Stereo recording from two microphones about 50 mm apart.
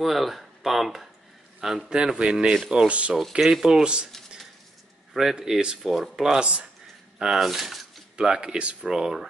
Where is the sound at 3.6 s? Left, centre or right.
Centre.